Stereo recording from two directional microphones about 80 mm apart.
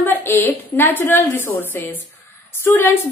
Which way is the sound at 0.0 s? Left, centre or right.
Left.